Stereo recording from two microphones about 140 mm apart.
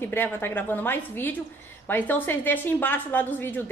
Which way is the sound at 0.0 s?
15° left (ahead or behind).